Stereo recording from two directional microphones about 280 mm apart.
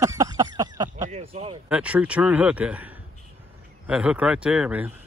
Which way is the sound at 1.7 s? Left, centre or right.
Centre.